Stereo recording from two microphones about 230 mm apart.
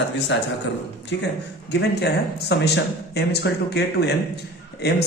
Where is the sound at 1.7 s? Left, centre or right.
Left.